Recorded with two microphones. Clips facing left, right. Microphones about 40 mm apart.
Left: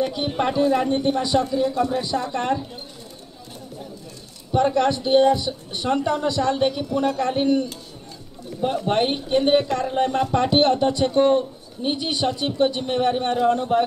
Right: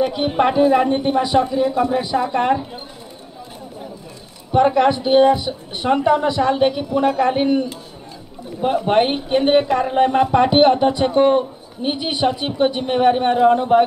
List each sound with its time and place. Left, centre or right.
0.0 s speech: centre
4.5 s speech: centre